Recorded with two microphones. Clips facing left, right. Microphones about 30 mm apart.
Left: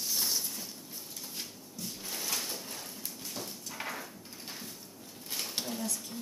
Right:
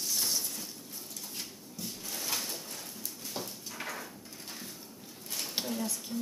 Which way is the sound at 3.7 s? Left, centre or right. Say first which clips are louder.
Left 1 dB; centre.